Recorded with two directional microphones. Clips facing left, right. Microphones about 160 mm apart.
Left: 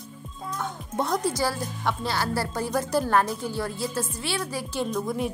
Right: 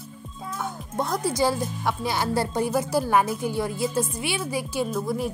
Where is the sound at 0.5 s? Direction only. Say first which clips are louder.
Even; 5° right (ahead or behind).